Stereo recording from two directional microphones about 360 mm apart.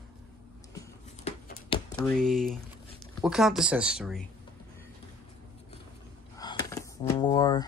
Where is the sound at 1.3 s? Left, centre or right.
Centre.